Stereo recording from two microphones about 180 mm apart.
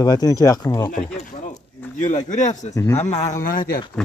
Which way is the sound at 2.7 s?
15° left (ahead or behind).